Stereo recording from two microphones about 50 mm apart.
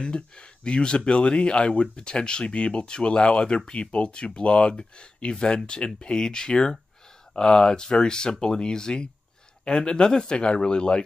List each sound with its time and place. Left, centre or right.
0.0 s speech: centre